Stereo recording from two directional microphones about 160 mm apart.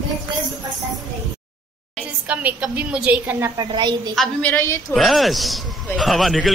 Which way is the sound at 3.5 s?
25° right (ahead or behind).